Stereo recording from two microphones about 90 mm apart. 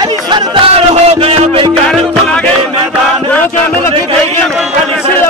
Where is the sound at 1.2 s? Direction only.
90° right.